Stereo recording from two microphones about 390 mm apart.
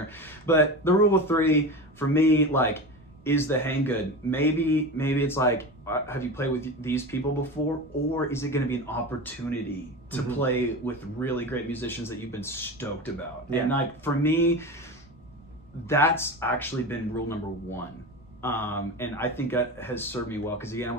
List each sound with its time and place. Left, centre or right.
0.0 s speech: centre
8.3 s speech: centre
15.9 s speech: centre